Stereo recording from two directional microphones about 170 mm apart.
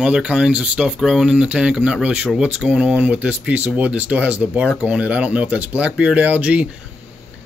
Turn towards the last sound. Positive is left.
turn(degrees=-10)  # may be behind; listen again after turning